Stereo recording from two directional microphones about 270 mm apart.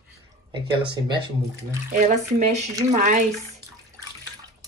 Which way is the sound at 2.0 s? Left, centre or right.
Right.